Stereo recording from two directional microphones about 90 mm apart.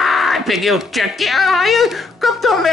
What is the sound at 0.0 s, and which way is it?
Speech, centre (ahead or behind).